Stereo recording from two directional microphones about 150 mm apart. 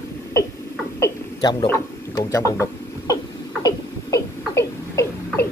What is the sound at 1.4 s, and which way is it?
Speech, 30° left (ahead or behind).